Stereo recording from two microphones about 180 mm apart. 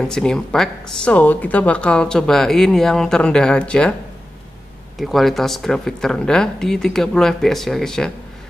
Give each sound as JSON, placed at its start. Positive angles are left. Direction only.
{"t": 0.0, "sound": "speech", "side_deg": 5}
{"t": 4.9, "sound": "speech", "side_deg": 0}